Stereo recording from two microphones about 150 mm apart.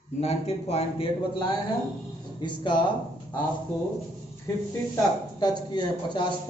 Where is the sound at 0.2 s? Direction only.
45° left (ahead or behind).